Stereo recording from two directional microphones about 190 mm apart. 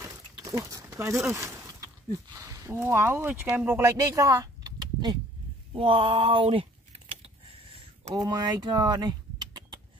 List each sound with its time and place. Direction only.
0.0 s a sound: 15° right (ahead or behind)
1.2 s speech: 15° right (ahead or behind)
8.1 s speech: 20° right (ahead or behind)